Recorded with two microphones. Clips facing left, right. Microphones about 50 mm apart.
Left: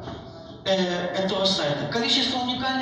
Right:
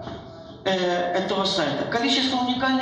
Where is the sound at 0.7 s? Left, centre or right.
Right.